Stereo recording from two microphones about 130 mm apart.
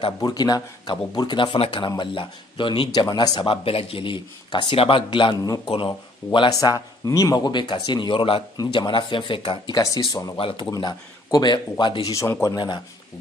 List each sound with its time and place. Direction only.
0.2 s speech: 30° left (ahead or behind)
5.7 s speech: 40° left (ahead or behind)
6.5 s speech: 30° left (ahead or behind)
10.3 s speech: 40° left (ahead or behind); by 12.5 s 20° left (ahead or behind)
12.5 s speech: 35° left (ahead or behind)